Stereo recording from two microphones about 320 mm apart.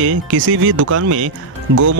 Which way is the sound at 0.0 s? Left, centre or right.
Right.